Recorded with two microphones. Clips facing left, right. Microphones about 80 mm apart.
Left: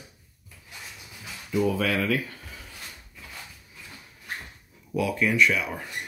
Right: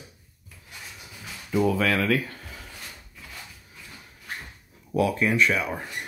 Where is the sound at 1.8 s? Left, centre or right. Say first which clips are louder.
Right 2 dB; right.